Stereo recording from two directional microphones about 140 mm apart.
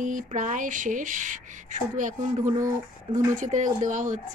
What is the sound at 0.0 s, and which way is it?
Speech, 65° right (ahead or behind).